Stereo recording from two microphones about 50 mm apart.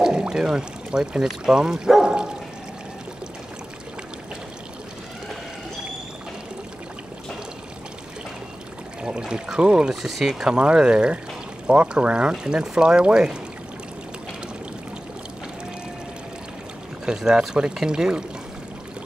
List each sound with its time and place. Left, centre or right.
0.0 s speech: centre
2.0 s dog: centre
9.0 s speech: centre
17.0 s speech: centre